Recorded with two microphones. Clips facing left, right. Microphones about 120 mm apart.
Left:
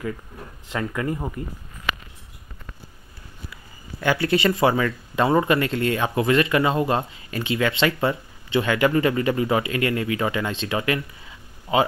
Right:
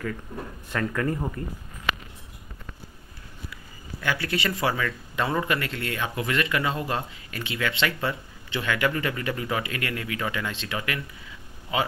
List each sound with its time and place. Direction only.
0.7 s speech: 15° left (ahead or behind)
4.0 s speech: 25° left (ahead or behind)